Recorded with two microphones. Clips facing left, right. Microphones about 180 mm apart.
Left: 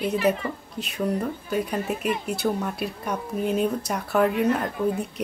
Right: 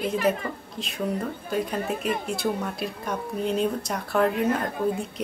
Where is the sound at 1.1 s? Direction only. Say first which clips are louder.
Left 2 dB; centre (ahead or behind).